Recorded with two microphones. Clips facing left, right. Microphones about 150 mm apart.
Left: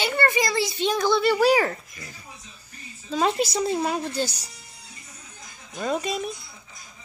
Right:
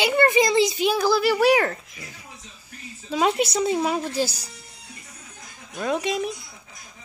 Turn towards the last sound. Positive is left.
turn(degrees=0)  # may be behind; listen again after turning